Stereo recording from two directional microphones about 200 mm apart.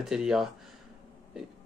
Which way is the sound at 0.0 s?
Centre (ahead or behind).